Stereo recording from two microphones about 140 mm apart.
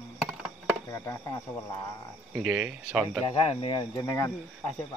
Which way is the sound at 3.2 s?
45° left (ahead or behind).